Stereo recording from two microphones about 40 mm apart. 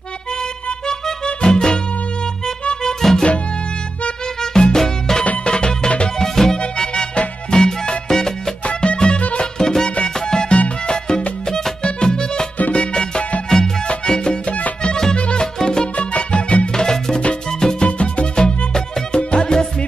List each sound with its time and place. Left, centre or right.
0.4 s music: centre
2.8 s music: centre
4.4 s music: centre
6.6 s music: left
8.6 s music: left
9.6 s music: centre
9.8 s music: left
15.1 s music: left
15.4 s music: centre
16.0 s music: left
16.7 s music: centre
17.8 s music: left